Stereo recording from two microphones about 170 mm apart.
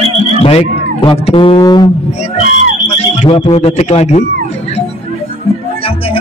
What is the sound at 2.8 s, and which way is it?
Speech, 40° left (ahead or behind).